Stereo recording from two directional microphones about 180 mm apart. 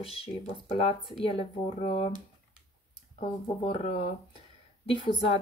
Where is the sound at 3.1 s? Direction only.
30° left (ahead or behind).